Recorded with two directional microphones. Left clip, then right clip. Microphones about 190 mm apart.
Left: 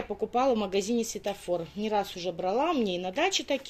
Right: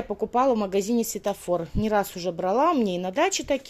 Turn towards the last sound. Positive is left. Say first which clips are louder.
# right 4 dB
turn(degrees=-30)  # may be behind; listen again after turning